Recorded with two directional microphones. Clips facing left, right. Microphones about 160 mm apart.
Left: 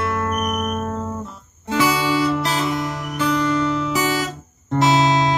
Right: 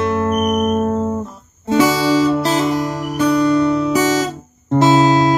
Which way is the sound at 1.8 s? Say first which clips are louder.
Right 4 dB; 35° right (ahead or behind).